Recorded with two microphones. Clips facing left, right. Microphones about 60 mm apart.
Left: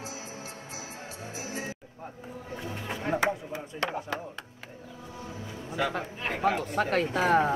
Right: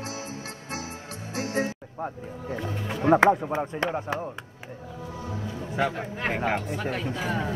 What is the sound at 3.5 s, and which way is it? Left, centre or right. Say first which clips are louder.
Speech: right 5 dB; right.